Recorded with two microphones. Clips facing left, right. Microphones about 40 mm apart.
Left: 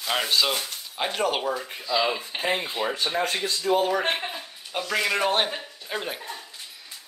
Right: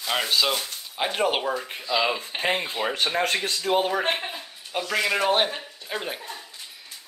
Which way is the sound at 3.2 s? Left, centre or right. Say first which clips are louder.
Right 1 dB; right.